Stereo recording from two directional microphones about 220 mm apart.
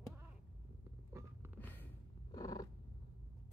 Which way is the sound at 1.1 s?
10° right (ahead or behind).